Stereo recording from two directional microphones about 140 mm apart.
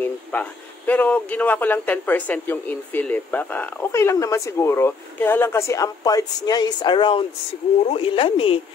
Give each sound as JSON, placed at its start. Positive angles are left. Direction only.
{"t": 0.0, "sound": "speech", "side_deg": 10}